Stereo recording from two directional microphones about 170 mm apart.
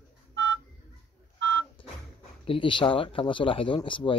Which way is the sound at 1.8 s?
30° left (ahead or behind).